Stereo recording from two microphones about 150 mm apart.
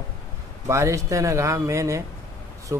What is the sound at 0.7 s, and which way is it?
A man's voice, 20° right (ahead or behind).